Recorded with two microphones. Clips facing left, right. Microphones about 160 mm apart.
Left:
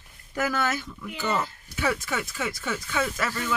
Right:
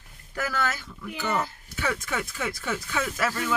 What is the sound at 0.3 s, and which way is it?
Speech, 20° left (ahead or behind).